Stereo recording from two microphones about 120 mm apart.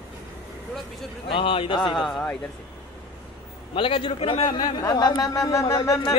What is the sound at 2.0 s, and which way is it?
Speech, 5° left (ahead or behind).